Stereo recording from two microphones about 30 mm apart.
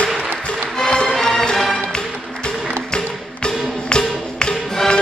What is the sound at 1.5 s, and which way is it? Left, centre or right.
Music, centre.